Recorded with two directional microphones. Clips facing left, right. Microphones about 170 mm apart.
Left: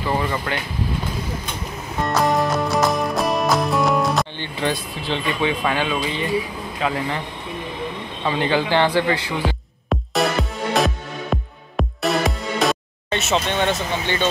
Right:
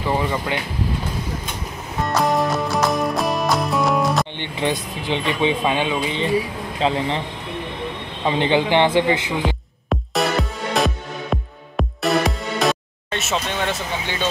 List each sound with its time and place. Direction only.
0.0 s speech: 15° right (ahead or behind)
2.0 s music: centre (ahead or behind)
4.4 s speech: 20° right (ahead or behind)
8.3 s speech: 20° right (ahead or behind)
9.8 s music: centre (ahead or behind)